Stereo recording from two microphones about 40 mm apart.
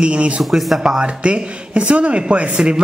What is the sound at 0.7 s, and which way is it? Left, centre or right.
A man's voice, right.